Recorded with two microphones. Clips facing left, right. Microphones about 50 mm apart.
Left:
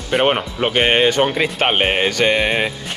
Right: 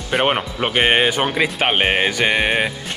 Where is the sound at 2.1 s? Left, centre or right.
Centre.